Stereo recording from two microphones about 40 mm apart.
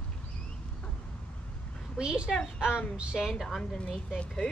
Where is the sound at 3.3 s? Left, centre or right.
Centre.